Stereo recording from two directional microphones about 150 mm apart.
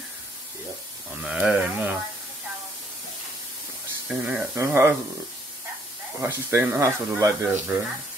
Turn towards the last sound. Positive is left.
turn(degrees=-15)  # may be behind; listen again after turning